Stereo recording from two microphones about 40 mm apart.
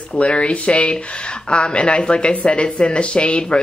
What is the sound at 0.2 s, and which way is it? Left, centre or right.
Speech, left.